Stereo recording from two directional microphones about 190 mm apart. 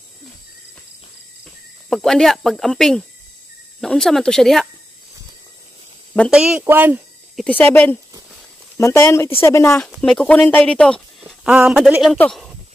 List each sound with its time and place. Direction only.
1.4 s speech: centre (ahead or behind)
6.3 s speech: 5° right (ahead or behind)
7.4 s speech: 10° left (ahead or behind)
9.8 s speech: centre (ahead or behind)